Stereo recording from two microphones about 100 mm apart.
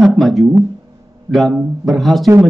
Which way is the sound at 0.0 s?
Centre (ahead or behind).